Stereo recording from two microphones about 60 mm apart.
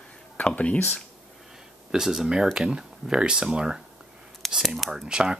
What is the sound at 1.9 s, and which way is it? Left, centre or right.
Speech, centre.